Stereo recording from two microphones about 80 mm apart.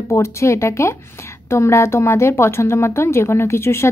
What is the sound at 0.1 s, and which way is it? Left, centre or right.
A woman's voice, left.